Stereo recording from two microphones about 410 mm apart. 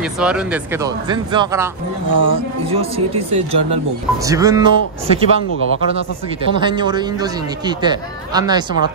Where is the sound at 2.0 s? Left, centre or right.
Right.